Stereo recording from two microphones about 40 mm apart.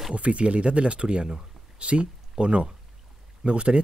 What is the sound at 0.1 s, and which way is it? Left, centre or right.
Speech, right.